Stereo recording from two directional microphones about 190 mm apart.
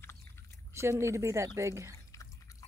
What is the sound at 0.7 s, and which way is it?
Speech, 15° right (ahead or behind).